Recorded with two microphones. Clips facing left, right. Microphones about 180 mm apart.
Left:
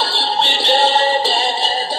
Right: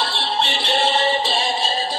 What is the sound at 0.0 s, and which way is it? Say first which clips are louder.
Music: left 3 dB; 35° left (ahead or behind).